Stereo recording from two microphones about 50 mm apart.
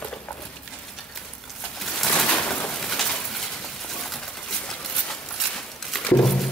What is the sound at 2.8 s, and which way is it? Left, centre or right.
Pigeon, centre.